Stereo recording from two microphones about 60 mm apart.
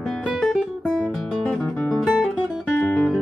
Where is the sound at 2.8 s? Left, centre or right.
Left.